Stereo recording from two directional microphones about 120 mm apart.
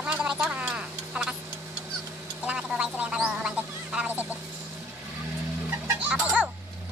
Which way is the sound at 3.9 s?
10° right (ahead or behind).